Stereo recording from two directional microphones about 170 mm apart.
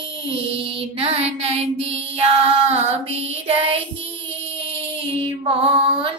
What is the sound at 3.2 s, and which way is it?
Child singing, 35° right (ahead or behind).